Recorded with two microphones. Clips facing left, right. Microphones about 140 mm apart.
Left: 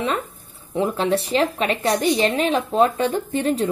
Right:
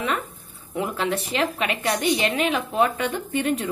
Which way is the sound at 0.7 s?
30° left (ahead or behind).